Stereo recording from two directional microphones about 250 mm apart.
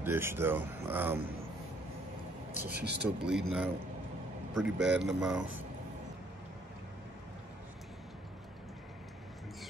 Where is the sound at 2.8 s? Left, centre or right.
Right.